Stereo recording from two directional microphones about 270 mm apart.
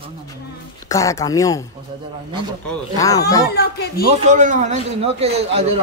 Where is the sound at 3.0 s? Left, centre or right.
Centre.